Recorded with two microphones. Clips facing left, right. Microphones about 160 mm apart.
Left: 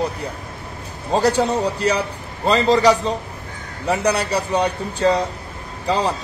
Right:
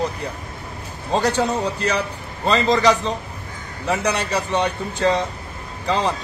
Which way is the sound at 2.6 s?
10° left (ahead or behind).